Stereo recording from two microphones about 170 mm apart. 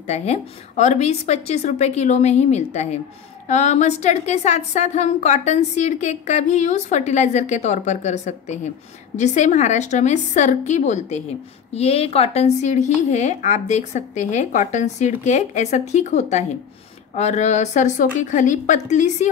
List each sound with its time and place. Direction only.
0.0 s a woman's voice: 40° left (ahead or behind)